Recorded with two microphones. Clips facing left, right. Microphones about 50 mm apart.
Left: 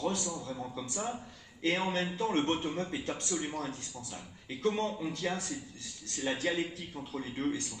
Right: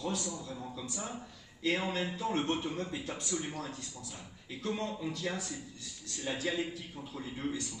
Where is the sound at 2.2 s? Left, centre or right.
Left.